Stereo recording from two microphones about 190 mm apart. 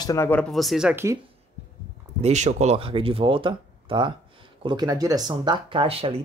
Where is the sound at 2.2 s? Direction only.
35° right (ahead or behind).